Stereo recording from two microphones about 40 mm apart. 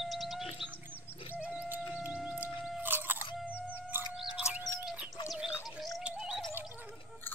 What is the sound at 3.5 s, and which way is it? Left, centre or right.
Music, right.